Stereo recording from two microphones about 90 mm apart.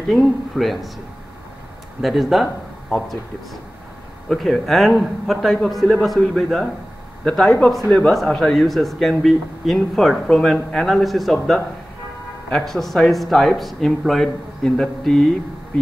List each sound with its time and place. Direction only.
0.1 s speech: centre (ahead or behind)
2.0 s speech: centre (ahead or behind)
4.3 s speech: centre (ahead or behind)
12.4 s speech: 5° left (ahead or behind)